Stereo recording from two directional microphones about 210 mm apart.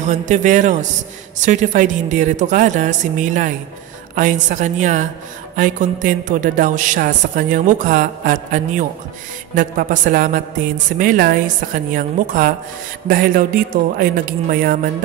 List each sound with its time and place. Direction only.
0.0 s a woman's voice: 35° right (ahead or behind)